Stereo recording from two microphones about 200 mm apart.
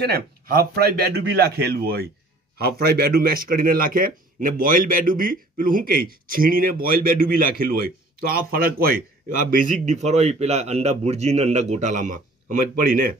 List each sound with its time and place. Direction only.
0.0 s a man's voice: 50° right (ahead or behind)